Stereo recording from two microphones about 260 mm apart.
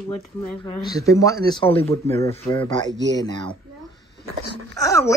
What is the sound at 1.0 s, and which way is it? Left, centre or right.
Speech, centre.